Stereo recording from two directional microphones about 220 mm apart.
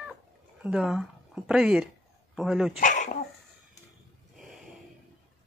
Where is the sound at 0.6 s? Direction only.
5° right (ahead or behind).